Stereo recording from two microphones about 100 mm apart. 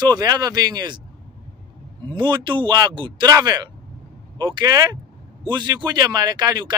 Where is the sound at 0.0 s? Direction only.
40° right (ahead or behind).